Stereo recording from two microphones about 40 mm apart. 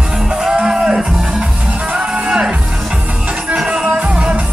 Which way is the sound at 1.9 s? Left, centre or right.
Right.